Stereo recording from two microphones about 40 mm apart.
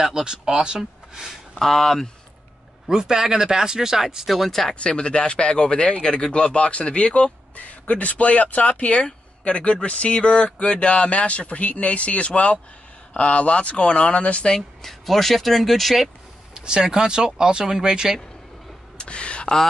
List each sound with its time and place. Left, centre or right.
0.0 s speech: centre
1.6 s speech: centre
2.9 s speech: centre
4.5 s speech: centre
4.7 s speech: left
14.5 s speech: centre
16.5 s speech: centre
18.9 s a sound: left